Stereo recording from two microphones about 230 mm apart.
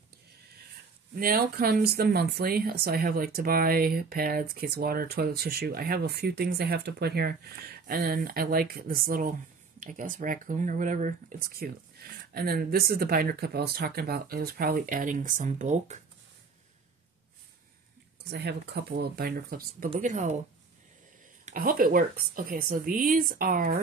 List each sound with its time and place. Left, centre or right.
1.1 s speech: right
18.3 s speech: right
21.5 s speech: right